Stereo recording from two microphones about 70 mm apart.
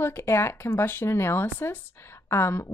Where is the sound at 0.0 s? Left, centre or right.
Left.